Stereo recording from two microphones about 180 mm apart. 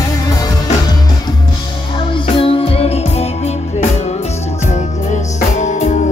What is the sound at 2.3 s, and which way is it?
Music, 30° left (ahead or behind).